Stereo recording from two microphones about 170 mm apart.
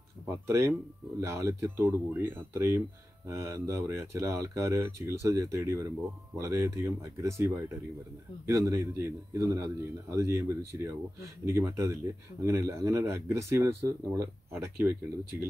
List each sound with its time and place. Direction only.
0.5 s speech: 15° right (ahead or behind)